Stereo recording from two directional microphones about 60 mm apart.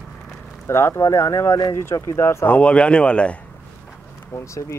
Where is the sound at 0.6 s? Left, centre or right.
Left.